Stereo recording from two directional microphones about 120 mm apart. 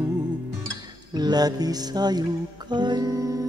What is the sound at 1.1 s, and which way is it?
Music, 35° right (ahead or behind).